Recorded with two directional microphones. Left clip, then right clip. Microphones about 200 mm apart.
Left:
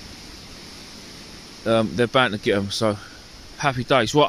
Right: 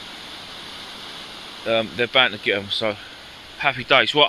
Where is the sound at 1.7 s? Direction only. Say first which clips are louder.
Left 1 dB; 40° left (ahead or behind).